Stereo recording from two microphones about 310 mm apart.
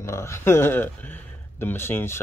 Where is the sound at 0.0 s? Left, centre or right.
Centre.